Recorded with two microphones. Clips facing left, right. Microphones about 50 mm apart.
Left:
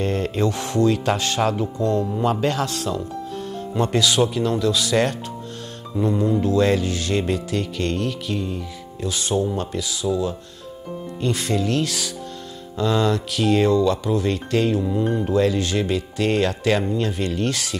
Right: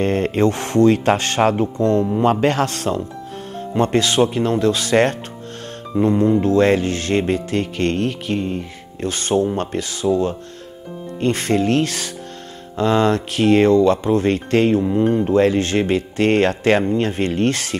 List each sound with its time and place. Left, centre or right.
0.0 s speech: right